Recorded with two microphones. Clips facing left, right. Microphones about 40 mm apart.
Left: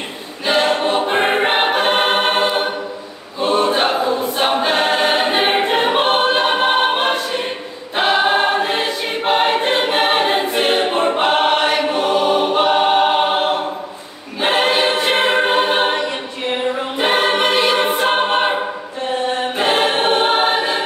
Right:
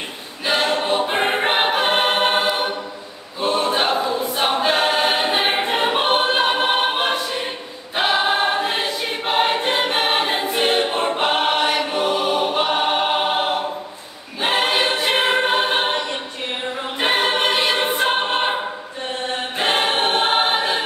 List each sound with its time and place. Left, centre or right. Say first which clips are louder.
0.5 s choir: left 3 dB; centre
10.9 s choir: left 4 dB; centre
11.2 s choir: left 2 dB; centre
17.0 s choir: left 3 dB; centre
19.6 s choir: left 2 dB; centre